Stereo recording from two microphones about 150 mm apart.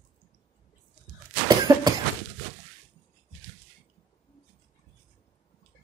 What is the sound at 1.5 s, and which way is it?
Cough, 25° right (ahead or behind).